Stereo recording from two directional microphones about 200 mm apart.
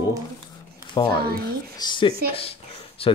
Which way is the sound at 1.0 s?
20° left (ahead or behind).